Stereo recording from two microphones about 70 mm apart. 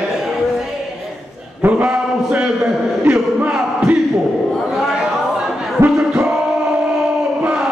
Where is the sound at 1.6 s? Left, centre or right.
Centre.